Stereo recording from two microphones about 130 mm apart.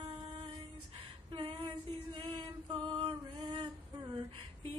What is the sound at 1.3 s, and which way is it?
Female singing, 40° right (ahead or behind).